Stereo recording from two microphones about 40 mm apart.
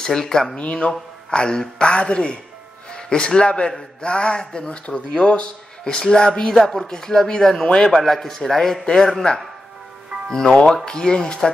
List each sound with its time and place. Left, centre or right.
0.0 s speech: centre
0.6 s a man's voice: left
10.3 s speech: centre